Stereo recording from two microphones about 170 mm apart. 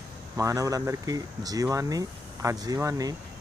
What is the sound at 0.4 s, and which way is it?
Speech, 20° right (ahead or behind).